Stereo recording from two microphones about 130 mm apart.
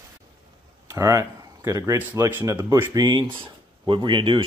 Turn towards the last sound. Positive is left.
turn(degrees=-35)  # may be behind; listen again after turning